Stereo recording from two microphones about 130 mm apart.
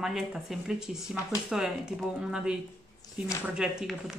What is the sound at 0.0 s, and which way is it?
Speech, 5° right (ahead or behind).